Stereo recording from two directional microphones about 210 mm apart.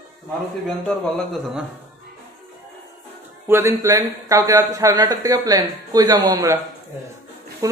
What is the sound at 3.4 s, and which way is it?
A man's voice, 15° right (ahead or behind).